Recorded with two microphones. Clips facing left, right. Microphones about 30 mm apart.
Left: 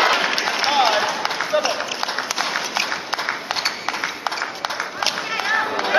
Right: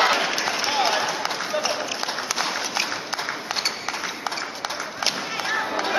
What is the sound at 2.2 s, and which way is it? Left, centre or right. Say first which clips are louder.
Applause: left 3 dB; centre.